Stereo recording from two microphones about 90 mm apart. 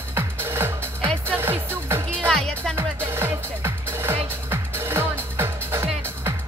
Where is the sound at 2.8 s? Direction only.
30° right (ahead or behind).